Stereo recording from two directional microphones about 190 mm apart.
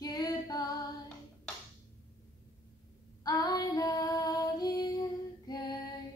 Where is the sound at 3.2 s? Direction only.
20° left (ahead or behind).